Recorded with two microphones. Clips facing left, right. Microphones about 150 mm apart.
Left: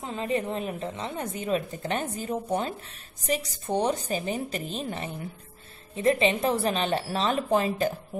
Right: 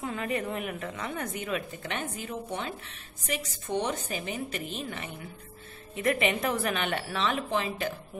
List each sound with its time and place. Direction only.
0.0 s a woman's voice: 25° left (ahead or behind); by 7.9 s 40° left (ahead or behind)